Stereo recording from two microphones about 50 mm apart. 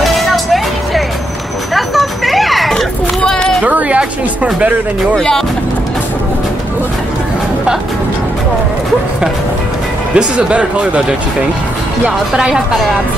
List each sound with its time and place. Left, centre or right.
0.0 s music: centre
1.7 s a sound: centre
2.7 s children playing: centre
3.6 s a sound: right
5.1 s speech: centre
10.1 s speech: right
12.4 s speech: centre